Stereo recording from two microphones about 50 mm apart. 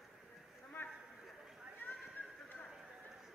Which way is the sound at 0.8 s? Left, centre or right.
Left.